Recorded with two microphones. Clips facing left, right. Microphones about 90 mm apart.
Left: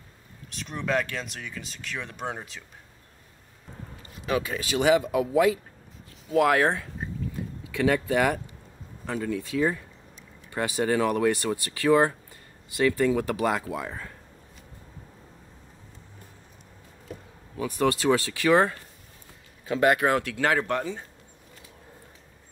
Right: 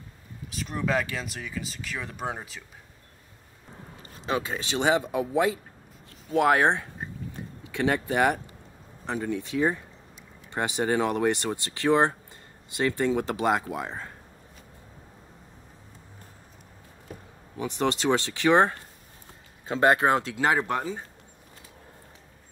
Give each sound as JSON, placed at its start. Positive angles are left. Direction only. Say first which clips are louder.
{"t": 0.5, "sound": "speech", "louder": "right 1 dB", "side_deg": 0}
{"t": 4.1, "sound": "speech", "louder": "left 1 dB", "side_deg": -30}
{"t": 17.6, "sound": "speech", "louder": "left 2 dB", "side_deg": -25}